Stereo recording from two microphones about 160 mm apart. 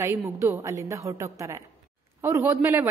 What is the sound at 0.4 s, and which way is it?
A woman's voice, 20° right (ahead or behind).